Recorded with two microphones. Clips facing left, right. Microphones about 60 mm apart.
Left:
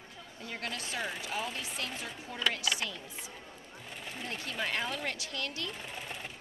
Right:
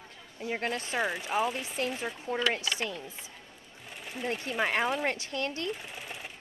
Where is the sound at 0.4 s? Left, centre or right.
Right.